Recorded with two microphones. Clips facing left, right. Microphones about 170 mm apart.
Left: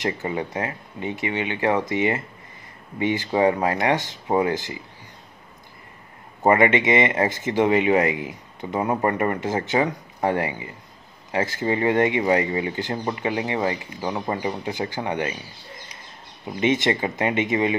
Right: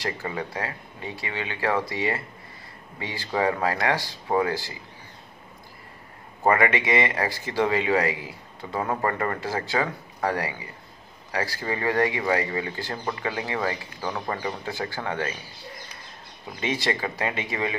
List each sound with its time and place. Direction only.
0.0 s speech: 20° left (ahead or behind)
6.4 s speech: 20° left (ahead or behind)
16.5 s speech: 20° left (ahead or behind)